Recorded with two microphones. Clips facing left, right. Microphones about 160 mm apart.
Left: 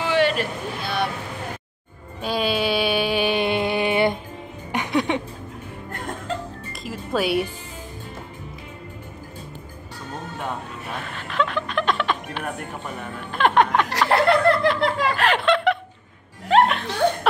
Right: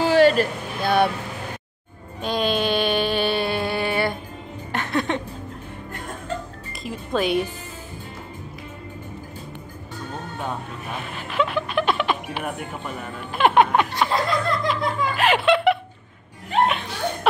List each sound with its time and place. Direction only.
0.0 s a sound: 40° right (ahead or behind)
2.2 s a sound: 5° left (ahead or behind)
4.7 s music: 15° left (ahead or behind)
6.8 s speech: 5° left (ahead or behind)
11.1 s music: 10° right (ahead or behind)
13.8 s chuckle: 80° left
15.1 s snicker: 5° right (ahead or behind)
16.6 s laughter: centre (ahead or behind)